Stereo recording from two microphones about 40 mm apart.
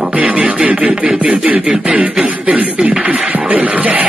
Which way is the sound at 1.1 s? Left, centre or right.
Centre.